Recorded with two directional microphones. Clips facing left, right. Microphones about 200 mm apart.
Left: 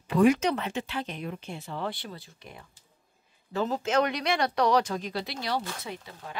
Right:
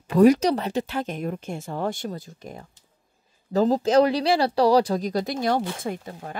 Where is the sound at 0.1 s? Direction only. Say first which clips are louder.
Right 6 dB; 40° right (ahead or behind).